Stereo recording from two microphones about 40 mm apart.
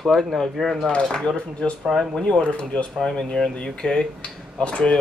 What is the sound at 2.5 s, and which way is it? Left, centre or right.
Speech, left.